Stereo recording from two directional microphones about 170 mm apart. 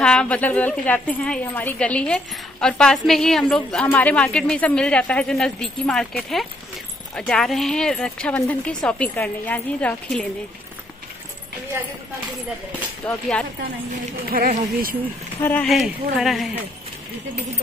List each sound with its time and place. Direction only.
0.0 s a woman's voice: 5° left (ahead or behind)
13.0 s a woman's voice: 5° left (ahead or behind)
14.2 s speech: 55° right (ahead or behind)
15.4 s a woman's voice: 10° left (ahead or behind)
15.7 s speech: centre (ahead or behind)